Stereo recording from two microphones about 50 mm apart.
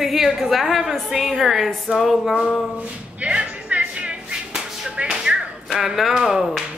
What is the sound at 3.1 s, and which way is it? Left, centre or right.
Music, right.